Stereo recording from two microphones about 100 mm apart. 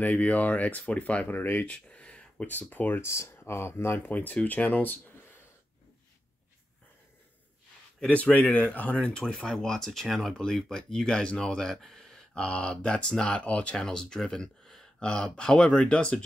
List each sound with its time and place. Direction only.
0.0 s speech: 15° left (ahead or behind)
8.0 s speech: 15° left (ahead or behind)